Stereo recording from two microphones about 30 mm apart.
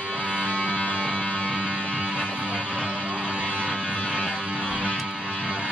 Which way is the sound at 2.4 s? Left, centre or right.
Left.